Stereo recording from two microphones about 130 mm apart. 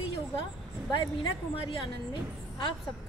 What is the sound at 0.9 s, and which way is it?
Speech, 40° left (ahead or behind).